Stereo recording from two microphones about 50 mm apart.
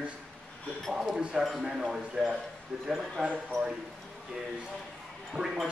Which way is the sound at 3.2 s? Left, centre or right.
Centre.